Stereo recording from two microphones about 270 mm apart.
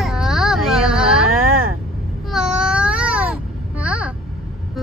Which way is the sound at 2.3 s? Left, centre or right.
Centre.